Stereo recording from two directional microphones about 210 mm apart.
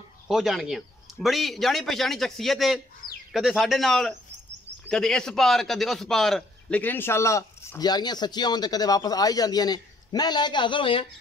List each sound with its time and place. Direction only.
0.3 s a man's voice: centre (ahead or behind); by 11.1 s 25° left (ahead or behind)